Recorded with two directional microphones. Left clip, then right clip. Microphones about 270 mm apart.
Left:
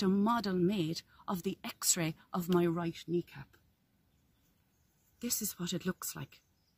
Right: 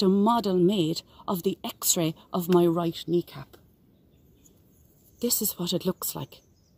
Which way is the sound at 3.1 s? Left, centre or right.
Centre.